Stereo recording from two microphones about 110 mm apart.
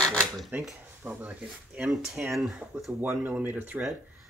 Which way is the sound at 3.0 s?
15° right (ahead or behind).